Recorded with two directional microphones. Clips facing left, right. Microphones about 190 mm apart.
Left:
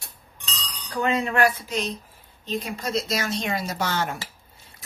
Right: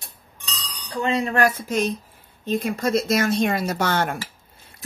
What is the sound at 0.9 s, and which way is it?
Speech, 30° right (ahead or behind).